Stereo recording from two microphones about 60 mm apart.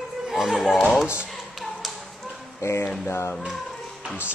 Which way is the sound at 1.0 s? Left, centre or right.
Centre.